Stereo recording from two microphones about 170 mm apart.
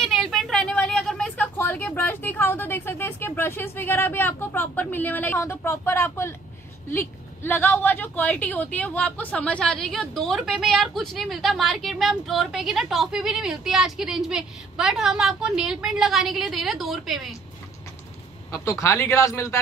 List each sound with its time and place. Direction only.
0.0 s a woman's voice: centre (ahead or behind)
18.5 s a man's voice: 15° left (ahead or behind)